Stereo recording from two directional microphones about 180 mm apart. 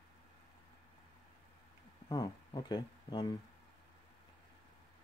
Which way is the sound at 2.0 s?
20° left (ahead or behind).